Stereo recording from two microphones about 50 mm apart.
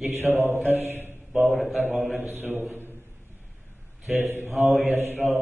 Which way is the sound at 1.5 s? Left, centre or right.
Centre.